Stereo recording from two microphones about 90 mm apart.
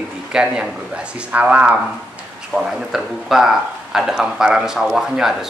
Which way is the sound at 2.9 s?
5° right (ahead or behind).